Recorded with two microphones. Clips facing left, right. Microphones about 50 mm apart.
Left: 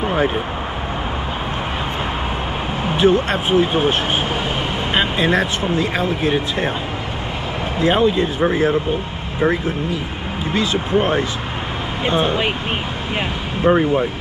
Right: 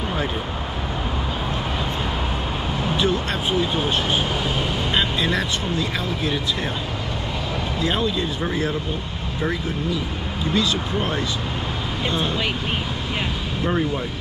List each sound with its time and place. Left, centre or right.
0.0 s vehicle: left
2.8 s speech: left
7.8 s speech: left
13.7 s speech: left